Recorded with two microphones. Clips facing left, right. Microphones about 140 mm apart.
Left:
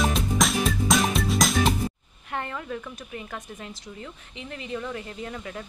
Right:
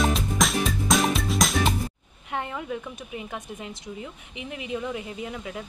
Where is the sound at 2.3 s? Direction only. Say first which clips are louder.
Right 1 dB; 10° right (ahead or behind).